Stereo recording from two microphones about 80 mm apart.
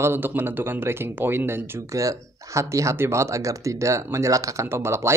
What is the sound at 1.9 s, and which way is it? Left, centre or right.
Speech, right.